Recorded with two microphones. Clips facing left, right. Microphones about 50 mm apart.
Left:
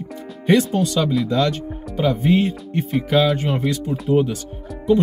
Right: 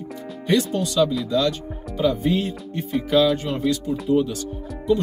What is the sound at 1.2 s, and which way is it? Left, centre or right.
Speech, left.